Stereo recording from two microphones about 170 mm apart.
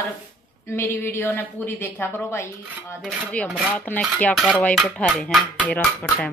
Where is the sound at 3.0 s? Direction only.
Centre (ahead or behind).